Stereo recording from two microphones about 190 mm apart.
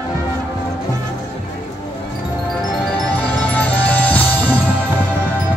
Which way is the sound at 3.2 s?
10° left (ahead or behind).